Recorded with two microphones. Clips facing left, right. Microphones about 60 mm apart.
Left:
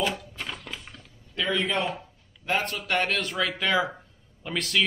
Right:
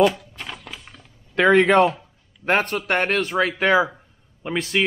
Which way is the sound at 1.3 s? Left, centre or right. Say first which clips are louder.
Right 12 dB; right.